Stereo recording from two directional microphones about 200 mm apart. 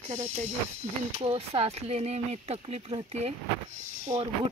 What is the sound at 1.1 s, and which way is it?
Speech, 30° right (ahead or behind).